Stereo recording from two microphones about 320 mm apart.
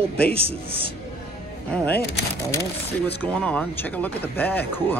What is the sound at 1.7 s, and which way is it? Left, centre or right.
Speech, centre.